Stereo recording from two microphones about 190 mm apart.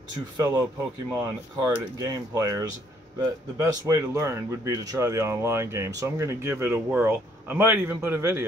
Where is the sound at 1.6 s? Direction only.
20° right (ahead or behind).